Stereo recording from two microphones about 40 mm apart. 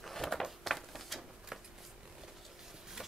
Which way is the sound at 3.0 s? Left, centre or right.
Centre.